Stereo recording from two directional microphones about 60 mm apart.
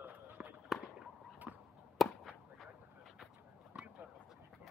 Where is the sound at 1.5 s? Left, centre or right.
Right.